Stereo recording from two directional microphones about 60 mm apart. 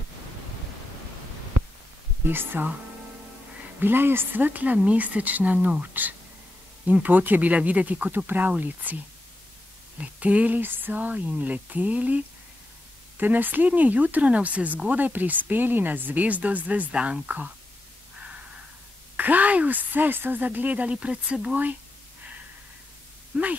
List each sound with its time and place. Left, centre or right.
2.2 s speech: right
3.8 s speech: right
9.9 s speech: right
13.2 s speech: right
16.9 s speech: centre
19.1 s speech: right
23.3 s speech: right